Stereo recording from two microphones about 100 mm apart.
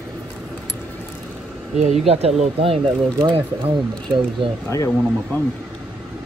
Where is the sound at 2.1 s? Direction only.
90° right; by 3.4 s 60° right (ahead or behind).